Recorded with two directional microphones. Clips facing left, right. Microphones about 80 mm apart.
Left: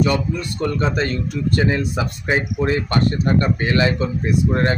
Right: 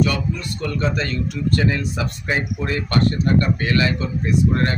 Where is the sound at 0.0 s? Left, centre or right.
Left.